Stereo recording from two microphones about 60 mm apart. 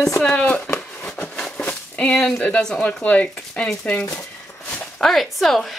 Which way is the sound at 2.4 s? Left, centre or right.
Centre.